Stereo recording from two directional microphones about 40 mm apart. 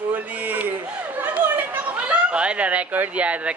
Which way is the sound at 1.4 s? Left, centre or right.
Right.